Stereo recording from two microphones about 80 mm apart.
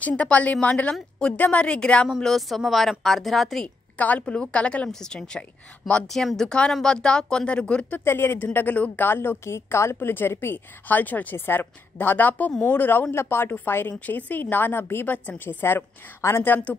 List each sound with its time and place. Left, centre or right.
0.0 s speech: centre
2.0 s a woman's voice: centre
3.6 s speech: centre
8.0 s a woman's voice: left